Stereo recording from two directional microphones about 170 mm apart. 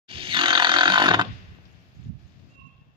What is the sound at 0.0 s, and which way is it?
Wild animals, 30° right (ahead or behind).